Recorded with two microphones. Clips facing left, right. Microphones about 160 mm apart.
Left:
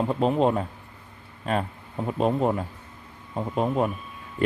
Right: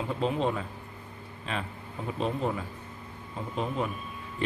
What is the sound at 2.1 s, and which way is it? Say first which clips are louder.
Speech: left 7 dB; 45° left (ahead or behind).